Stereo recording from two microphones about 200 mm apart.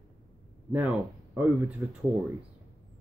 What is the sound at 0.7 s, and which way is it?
Speech, 10° right (ahead or behind).